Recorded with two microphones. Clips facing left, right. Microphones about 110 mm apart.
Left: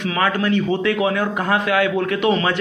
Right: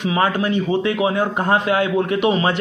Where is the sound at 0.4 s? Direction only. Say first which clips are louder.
Even; 15° right (ahead or behind).